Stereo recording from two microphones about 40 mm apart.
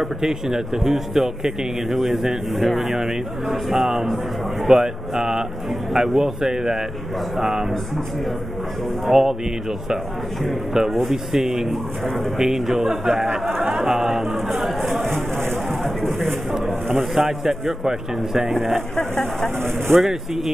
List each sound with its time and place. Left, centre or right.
0.0 s speech: centre
9.0 s speech: centre
10.4 s speech: centre
14.5 s chatter: centre
15.7 s a sound: centre
16.5 s speech: centre
18.9 s speech: centre
20.0 s speech: centre